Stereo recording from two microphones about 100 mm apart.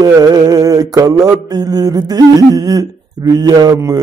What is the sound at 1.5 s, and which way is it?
Speech, 40° right (ahead or behind).